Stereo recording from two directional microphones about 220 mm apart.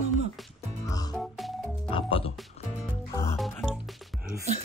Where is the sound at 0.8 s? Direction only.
15° left (ahead or behind).